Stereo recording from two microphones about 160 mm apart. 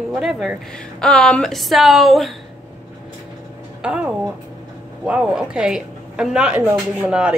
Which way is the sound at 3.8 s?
5° right (ahead or behind).